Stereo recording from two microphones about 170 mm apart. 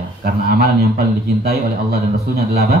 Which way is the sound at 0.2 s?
60° right (ahead or behind).